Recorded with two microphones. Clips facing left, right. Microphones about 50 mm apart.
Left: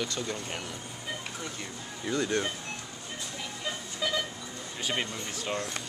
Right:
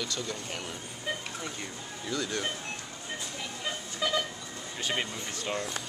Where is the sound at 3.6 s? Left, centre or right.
Centre.